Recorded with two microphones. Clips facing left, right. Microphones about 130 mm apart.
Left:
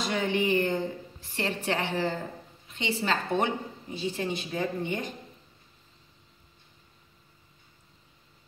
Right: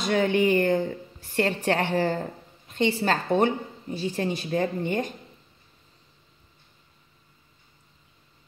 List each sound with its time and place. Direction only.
0.0 s a woman's voice: 50° right (ahead or behind)